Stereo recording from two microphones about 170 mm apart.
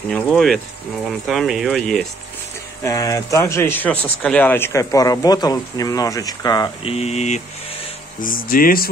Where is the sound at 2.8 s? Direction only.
20° left (ahead or behind).